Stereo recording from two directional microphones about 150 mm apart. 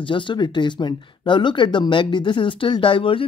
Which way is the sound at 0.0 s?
30° left (ahead or behind).